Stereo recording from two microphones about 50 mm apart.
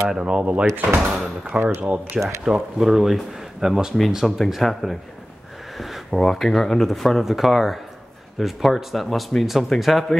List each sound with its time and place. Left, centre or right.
0.2 s speech: right
0.7 s speech: right
1.1 s speech: centre
1.6 s speech: right
2.1 s speech: centre
5.8 s a sound: centre
6.2 s speech: centre